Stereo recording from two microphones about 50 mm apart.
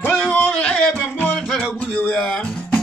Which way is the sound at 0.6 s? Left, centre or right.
Left.